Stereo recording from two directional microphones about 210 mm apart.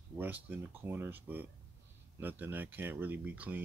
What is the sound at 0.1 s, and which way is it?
Speech, 10° right (ahead or behind).